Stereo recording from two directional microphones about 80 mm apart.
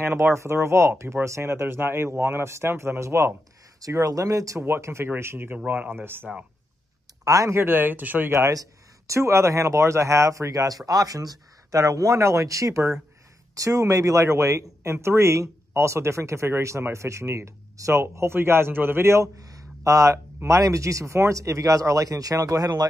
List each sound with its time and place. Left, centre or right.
0.0 s speech: right
3.8 s speech: right
4.6 s speech: right
7.2 s speech: right
7.5 s speech: right
8.3 s speech: right
19.3 s a sound: right
20.4 s speech: right